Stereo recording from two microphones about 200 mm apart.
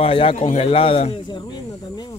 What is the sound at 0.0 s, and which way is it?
A man's voice, 30° left (ahead or behind).